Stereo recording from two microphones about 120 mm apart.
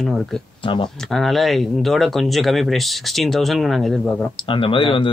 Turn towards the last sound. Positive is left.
turn(degrees=45)  # may be behind; listen again after turning